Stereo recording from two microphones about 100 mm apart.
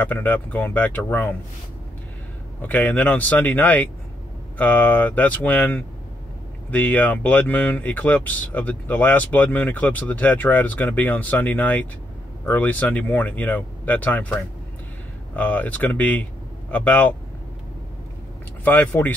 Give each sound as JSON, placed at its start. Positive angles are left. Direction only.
{"t": 0.0, "sound": "speech", "side_deg": 15}
{"t": 2.6, "sound": "speech", "side_deg": 15}
{"t": 15.3, "sound": "speech", "side_deg": 15}
{"t": 18.6, "sound": "speech", "side_deg": 20}